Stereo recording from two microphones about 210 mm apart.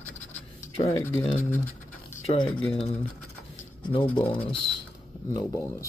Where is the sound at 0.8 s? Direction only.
15° left (ahead or behind).